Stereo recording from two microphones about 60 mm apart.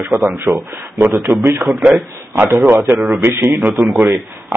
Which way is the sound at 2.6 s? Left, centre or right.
Right.